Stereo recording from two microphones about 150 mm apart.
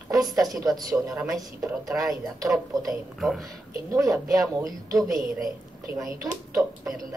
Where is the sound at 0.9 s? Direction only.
15° right (ahead or behind).